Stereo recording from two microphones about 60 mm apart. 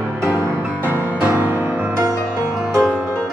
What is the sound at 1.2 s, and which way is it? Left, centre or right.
Music, right.